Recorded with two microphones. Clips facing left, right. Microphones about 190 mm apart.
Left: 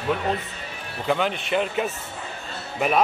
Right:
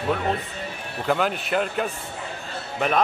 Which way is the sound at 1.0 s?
Centre (ahead or behind).